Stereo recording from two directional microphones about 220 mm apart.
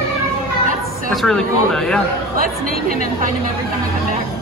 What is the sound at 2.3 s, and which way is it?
A woman's voice, 40° right (ahead or behind).